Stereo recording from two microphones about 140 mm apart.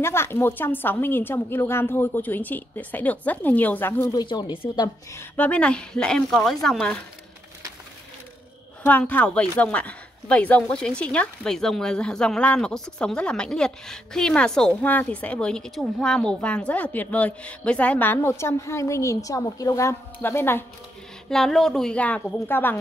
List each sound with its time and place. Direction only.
0.0 s a woman's voice: 15° left (ahead or behind)
4.1 s speech: 30° left (ahead or behind)
4.8 s a woman's voice: 15° left (ahead or behind)
8.8 s a woman's voice: 10° left (ahead or behind)
21.3 s a woman's voice: 5° left (ahead or behind)